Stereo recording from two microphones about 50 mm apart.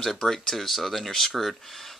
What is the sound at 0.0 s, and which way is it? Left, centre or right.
Speech, centre.